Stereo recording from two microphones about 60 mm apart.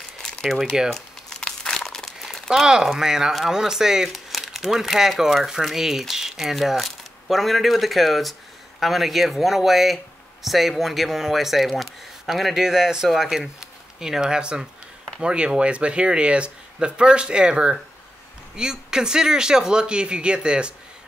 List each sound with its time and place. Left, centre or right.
0.2 s crumpling: centre
2.6 s speech: centre